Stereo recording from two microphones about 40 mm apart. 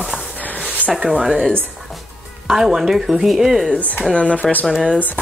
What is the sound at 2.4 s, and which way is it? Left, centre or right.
Speech, centre.